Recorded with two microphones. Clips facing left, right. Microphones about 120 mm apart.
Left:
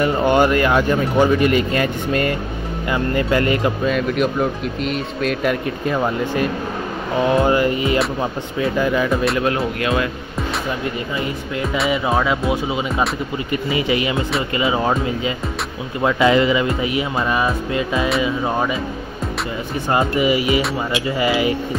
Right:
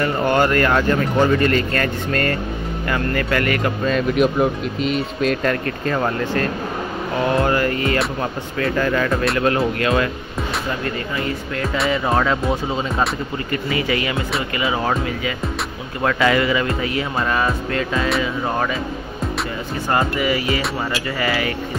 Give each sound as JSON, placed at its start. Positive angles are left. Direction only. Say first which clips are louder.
{"t": 0.0, "sound": "speech", "louder": "left 2 dB", "side_deg": 20}
{"t": 3.8, "sound": "speech", "louder": "right 1 dB", "side_deg": 0}
{"t": 9.1, "sound": "speech", "louder": "even", "side_deg": 0}
{"t": 11.1, "sound": "speech", "louder": "even", "side_deg": 20}
{"t": 11.9, "sound": "speech", "louder": "even", "side_deg": 10}
{"t": 13.5, "sound": "speech", "louder": "left 2 dB", "side_deg": 20}
{"t": 19.9, "sound": "speech", "louder": "left 2 dB", "side_deg": 20}